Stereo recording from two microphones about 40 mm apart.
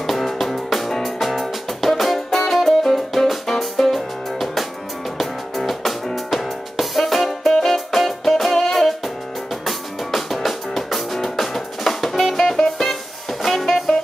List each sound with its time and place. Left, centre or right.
0.0 s music: centre